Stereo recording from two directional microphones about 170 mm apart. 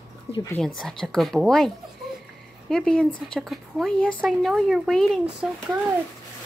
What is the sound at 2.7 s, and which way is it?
Speech, 5° left (ahead or behind).